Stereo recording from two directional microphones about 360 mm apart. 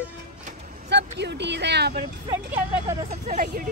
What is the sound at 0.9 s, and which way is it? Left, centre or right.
Speech, right.